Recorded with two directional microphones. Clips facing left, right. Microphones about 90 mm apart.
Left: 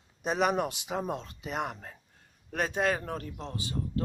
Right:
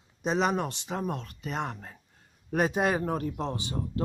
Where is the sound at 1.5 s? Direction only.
5° left (ahead or behind).